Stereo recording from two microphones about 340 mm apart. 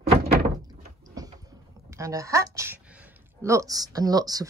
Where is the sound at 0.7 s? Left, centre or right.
Centre.